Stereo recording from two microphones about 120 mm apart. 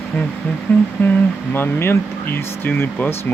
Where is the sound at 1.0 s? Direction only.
15° left (ahead or behind).